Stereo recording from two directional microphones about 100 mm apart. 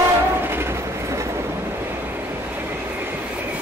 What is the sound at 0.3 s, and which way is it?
Train, 25° right (ahead or behind).